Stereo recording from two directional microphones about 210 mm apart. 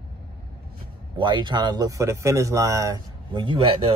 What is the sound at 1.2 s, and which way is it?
Speech, 20° right (ahead or behind).